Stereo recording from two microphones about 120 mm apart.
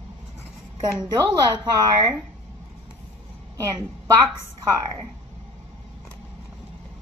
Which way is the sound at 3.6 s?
30° right (ahead or behind).